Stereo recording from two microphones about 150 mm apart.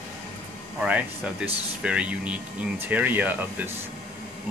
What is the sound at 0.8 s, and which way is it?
Speech, 5° right (ahead or behind).